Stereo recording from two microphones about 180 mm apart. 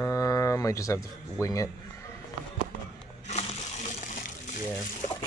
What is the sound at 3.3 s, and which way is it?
Water, 40° left (ahead or behind).